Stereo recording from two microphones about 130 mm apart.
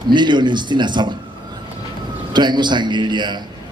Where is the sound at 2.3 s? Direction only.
35° right (ahead or behind).